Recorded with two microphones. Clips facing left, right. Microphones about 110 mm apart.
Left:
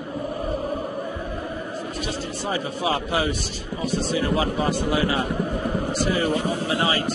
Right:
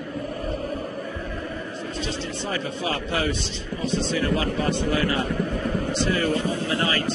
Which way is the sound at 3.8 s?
25° right (ahead or behind).